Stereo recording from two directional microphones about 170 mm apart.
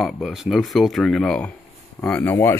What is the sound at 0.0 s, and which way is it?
Speech, centre (ahead or behind).